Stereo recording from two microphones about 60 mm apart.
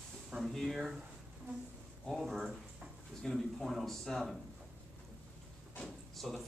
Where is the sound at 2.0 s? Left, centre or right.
Centre.